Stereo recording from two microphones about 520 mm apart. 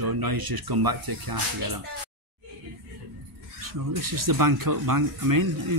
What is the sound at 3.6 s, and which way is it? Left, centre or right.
Speech, right.